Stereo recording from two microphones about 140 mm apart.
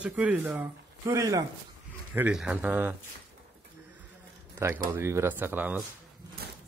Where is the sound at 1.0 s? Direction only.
25° right (ahead or behind).